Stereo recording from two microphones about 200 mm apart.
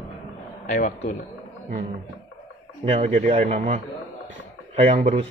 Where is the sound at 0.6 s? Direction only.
35° left (ahead or behind).